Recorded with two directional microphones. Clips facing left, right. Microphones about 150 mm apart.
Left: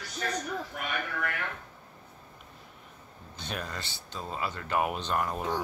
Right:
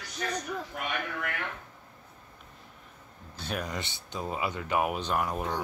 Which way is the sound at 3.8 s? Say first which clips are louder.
Right 3 dB; 20° right (ahead or behind).